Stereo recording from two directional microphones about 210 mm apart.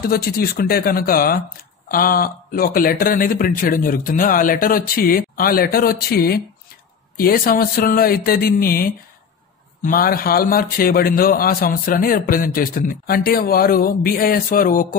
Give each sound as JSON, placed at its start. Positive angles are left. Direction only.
{"t": 0.0, "sound": "a man's voice", "side_deg": 45}